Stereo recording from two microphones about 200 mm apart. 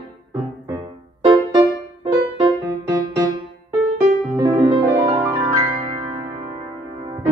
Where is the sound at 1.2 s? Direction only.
20° right (ahead or behind).